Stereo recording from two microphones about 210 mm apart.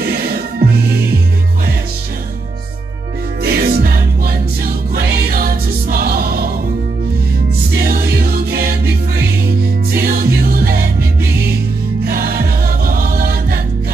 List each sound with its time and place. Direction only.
0.0 s music: 45° right (ahead or behind)
3.4 s music: 45° right (ahead or behind)
7.7 s music: 45° right (ahead or behind)
12.0 s music: 45° right (ahead or behind)